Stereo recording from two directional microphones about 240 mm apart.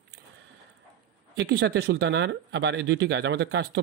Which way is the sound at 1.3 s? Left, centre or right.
Right.